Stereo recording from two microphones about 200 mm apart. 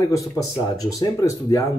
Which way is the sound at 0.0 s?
15° left (ahead or behind).